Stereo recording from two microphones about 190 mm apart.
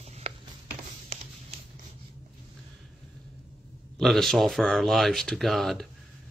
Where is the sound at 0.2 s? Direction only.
30° right (ahead or behind).